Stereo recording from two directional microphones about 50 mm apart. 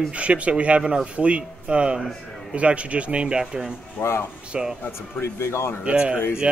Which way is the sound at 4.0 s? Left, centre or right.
Left.